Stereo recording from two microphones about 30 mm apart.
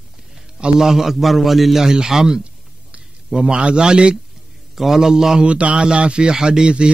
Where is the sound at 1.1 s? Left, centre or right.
Centre.